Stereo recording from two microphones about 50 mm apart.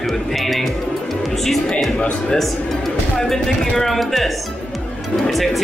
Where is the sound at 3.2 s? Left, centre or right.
Centre.